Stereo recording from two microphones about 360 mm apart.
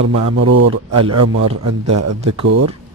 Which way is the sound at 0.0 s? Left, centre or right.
Right.